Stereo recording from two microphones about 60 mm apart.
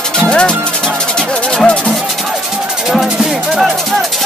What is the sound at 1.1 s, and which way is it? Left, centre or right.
Music, centre.